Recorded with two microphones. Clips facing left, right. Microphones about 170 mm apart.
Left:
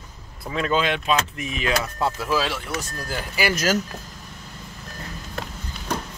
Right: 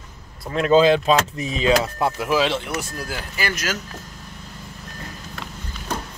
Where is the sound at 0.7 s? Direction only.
35° right (ahead or behind).